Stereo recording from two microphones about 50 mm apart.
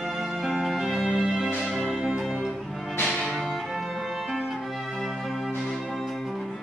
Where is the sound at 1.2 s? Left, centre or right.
Centre.